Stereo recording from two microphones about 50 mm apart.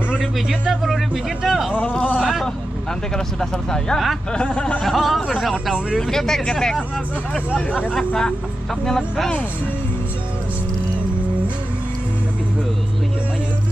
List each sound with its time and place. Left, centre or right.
0.2 s a man's voice: centre
1.8 s speech: left
2.1 s speech: centre
3.3 s speech: centre
4.8 s speech: centre
5.9 s speech: centre
8.1 s speech: centre